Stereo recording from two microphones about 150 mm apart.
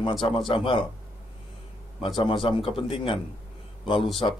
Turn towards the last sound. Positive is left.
turn(degrees=35)  # may be behind; listen again after turning